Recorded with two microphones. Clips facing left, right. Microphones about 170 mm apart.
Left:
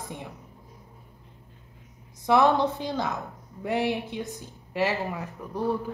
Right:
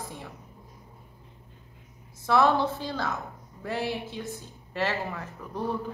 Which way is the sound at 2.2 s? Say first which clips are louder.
Left 2 dB; 15° left (ahead or behind).